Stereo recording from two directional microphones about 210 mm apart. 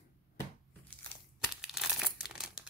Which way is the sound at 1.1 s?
10° left (ahead or behind).